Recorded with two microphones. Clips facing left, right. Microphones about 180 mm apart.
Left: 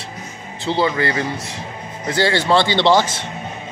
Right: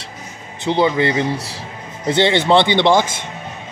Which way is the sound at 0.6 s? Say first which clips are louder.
Right 3 dB; 20° right (ahead or behind).